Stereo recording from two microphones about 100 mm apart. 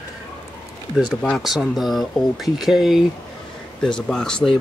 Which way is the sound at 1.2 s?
10° left (ahead or behind).